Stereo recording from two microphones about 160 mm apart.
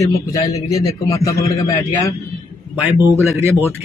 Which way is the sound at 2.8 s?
10° right (ahead or behind).